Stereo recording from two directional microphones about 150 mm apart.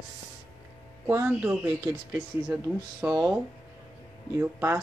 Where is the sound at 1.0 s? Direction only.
15° right (ahead or behind).